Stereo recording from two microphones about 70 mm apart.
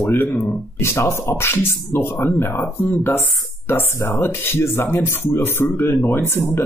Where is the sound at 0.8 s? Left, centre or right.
Left.